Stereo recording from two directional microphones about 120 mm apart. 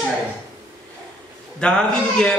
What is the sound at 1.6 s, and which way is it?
Speech, 5° left (ahead or behind).